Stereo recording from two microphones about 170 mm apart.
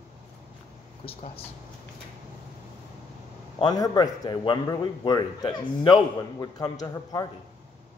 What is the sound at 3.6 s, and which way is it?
A man's voice, 20° left (ahead or behind).